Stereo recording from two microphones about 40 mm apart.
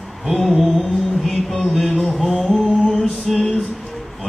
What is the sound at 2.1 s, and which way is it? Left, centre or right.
Music, centre.